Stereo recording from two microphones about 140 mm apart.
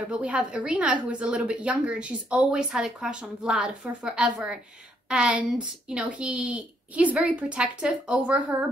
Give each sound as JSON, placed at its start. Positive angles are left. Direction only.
{"t": 0.1, "sound": "a woman's voice", "side_deg": -10}